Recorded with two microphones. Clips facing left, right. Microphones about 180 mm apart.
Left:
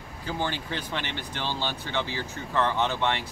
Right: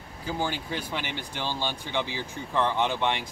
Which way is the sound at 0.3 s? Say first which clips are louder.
Right 1 dB; 10° right (ahead or behind).